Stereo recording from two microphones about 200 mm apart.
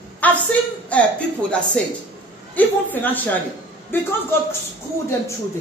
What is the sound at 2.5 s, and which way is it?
Speech, 10° left (ahead or behind).